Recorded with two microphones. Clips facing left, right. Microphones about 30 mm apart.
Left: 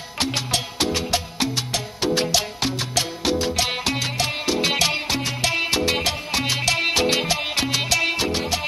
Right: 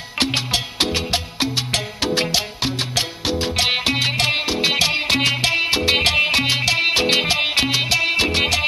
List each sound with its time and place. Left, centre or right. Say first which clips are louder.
0.7 s music: right 1 dB; right
2.3 s music: right 1 dB; right
3.5 s music: right 4 dB; right
4.5 s music: right 2 dB; right
5.0 s music: right 7 dB; right
5.5 s music: right 3 dB; right
6.0 s music: right 9 dB; right
6.4 s music: right 3 dB; right
7.1 s music: right 4 dB; right
7.7 s music: right 3 dB; right
8.2 s music: right 5 dB; right